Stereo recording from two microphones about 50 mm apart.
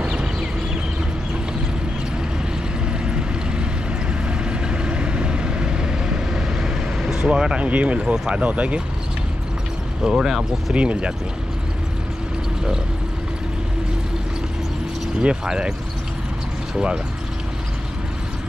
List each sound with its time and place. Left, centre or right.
0.0 s a sound: centre
3.1 s vehicle: centre
7.2 s speech: centre
10.0 s speech: centre
10.7 s speech: right
15.1 s speech: centre
16.7 s speech: centre